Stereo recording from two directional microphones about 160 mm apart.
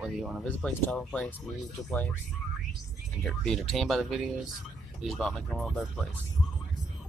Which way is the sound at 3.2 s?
Centre (ahead or behind).